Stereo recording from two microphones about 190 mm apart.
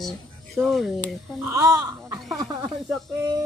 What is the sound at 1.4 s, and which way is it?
Speech, 15° right (ahead or behind).